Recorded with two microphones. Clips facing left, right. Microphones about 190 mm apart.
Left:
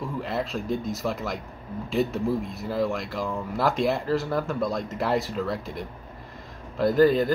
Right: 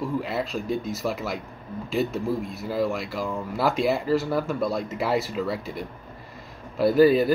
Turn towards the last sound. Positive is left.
turn(degrees=-5)  # may be behind; listen again after turning